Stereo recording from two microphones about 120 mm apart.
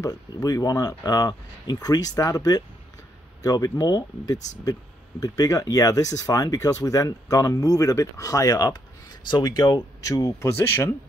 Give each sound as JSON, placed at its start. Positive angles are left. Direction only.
{"t": 0.0, "sound": "speech", "side_deg": 30}